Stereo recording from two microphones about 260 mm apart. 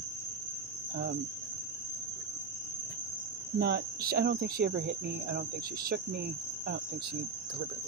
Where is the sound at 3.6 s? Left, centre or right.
Right.